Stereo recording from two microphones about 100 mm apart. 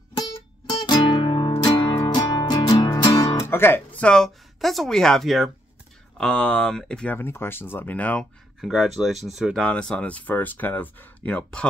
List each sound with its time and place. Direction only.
0.7 s music: 45° left (ahead or behind)
2.0 s music: 45° left (ahead or behind)
3.1 s guitar: 30° left (ahead or behind)
4.0 s speech: 5° left (ahead or behind)
7.2 s speech: 20° left (ahead or behind)
8.5 s speech: centre (ahead or behind)
9.6 s speech: 10° left (ahead or behind)